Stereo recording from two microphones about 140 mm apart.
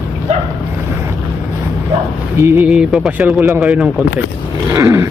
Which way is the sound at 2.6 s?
5° right (ahead or behind).